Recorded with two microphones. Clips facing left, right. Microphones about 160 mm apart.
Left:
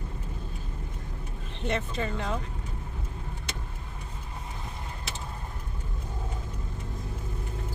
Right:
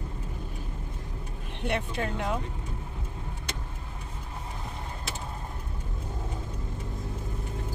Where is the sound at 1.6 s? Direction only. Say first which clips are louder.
Even; 10° right (ahead or behind).